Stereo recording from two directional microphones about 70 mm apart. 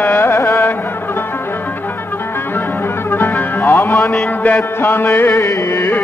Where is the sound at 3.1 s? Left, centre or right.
Left.